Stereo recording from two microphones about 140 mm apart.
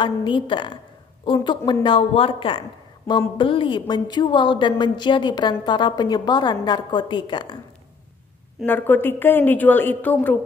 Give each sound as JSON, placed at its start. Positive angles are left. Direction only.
{"t": 0.0, "sound": "a woman's voice", "side_deg": 35}
{"t": 8.6, "sound": "a woman's voice", "side_deg": 15}